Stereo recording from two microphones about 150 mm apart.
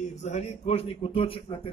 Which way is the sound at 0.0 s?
50° left (ahead or behind).